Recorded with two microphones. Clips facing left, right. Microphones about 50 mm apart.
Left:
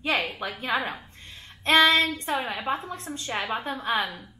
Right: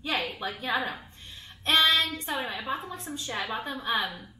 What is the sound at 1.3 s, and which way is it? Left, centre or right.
Female singing, left.